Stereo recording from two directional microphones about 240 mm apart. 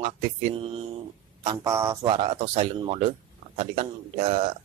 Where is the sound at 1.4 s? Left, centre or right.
Centre.